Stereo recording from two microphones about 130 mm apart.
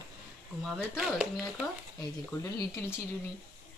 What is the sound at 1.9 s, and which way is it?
Speech, 25° left (ahead or behind).